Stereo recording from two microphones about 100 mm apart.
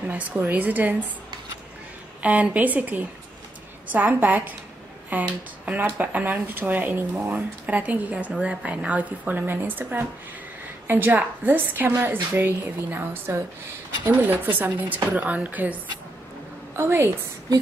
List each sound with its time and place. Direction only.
0.1 s speech: 15° right (ahead or behind)
2.2 s a woman's voice: 15° right (ahead or behind)